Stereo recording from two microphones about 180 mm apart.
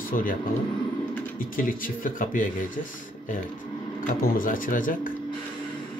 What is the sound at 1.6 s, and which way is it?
Speech, 50° left (ahead or behind).